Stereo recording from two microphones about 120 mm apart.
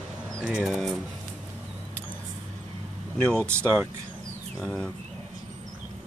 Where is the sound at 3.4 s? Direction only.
20° right (ahead or behind).